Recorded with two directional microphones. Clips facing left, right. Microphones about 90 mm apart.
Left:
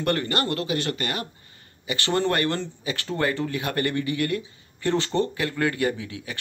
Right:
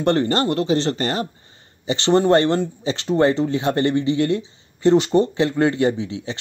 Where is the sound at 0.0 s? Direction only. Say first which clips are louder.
Right 7 dB; 25° right (ahead or behind).